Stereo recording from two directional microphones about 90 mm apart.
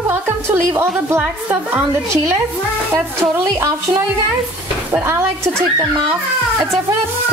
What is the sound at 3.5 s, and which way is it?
Music, 40° right (ahead or behind).